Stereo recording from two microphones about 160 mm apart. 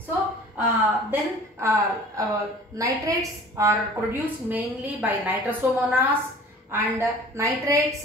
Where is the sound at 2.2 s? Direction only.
20° right (ahead or behind).